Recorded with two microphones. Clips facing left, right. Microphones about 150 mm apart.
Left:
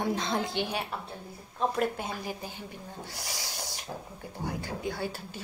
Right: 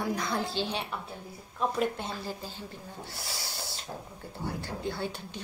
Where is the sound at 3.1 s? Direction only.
15° left (ahead or behind).